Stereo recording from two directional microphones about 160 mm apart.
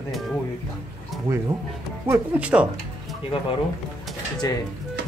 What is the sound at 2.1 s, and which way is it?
Speech, 10° right (ahead or behind).